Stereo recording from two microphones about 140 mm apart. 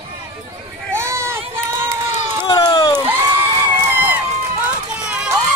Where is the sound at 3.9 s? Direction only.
15° right (ahead or behind).